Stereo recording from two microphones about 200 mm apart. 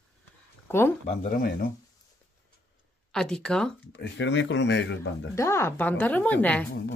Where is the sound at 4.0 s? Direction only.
65° left (ahead or behind).